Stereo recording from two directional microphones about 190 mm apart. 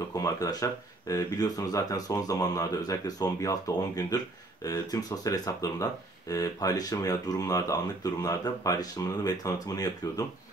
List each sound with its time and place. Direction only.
0.1 s speech: 15° left (ahead or behind)